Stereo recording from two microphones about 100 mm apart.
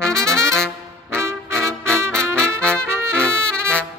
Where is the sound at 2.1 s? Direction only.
10° left (ahead or behind).